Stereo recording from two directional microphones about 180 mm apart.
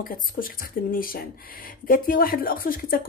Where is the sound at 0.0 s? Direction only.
55° left (ahead or behind).